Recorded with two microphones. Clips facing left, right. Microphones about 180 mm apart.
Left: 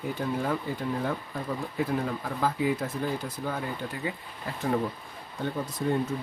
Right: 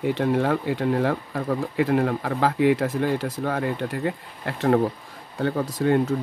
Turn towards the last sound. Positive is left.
turn(degrees=-75)  # may be behind; listen again after turning